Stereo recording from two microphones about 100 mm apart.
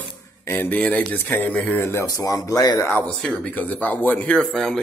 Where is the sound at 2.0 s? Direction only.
35° left (ahead or behind).